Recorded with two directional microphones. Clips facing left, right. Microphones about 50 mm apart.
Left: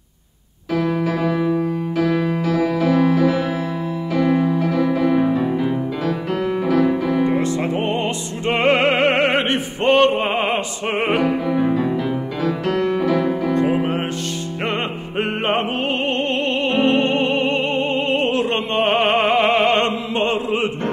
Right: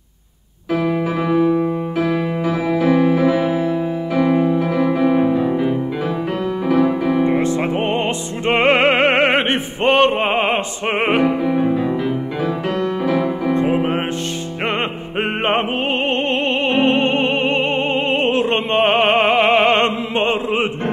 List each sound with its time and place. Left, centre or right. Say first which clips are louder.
0.7 s music: right 1 dB; centre
6.7 s music: right 2 dB; right
13.0 s music: even; right
14.6 s opera: right 2 dB; right